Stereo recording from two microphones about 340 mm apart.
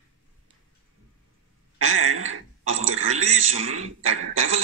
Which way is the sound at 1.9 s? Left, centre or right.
Right.